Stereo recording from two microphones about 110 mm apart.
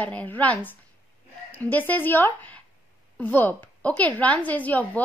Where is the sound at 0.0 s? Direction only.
15° left (ahead or behind).